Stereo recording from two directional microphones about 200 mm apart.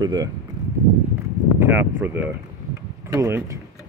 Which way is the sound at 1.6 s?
10° right (ahead or behind).